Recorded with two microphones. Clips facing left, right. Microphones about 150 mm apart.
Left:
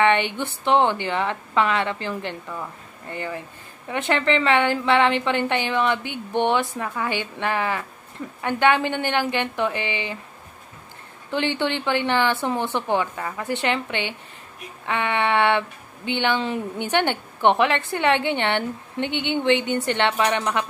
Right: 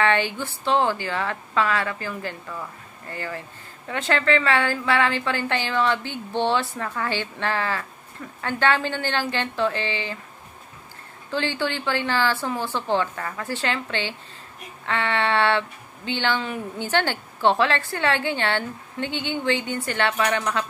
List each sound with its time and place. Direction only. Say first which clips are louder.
0.0 s a woman's voice: left 2 dB; 20° left (ahead or behind)
11.2 s a woman's voice: left 2 dB; 20° left (ahead or behind)